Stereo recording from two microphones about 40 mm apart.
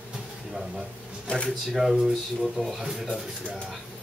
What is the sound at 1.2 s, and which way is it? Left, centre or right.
Speech, left.